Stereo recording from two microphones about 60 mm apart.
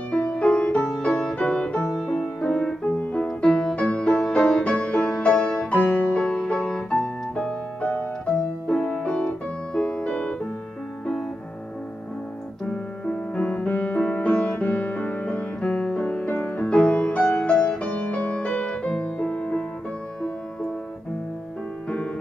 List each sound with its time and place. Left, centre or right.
0.1 s music: centre
7.8 s music: left
8.4 s piano: centre
12.6 s music: centre